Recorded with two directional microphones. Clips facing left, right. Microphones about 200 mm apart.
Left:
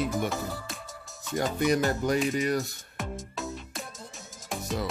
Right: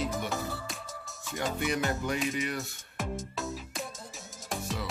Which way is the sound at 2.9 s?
Centre (ahead or behind).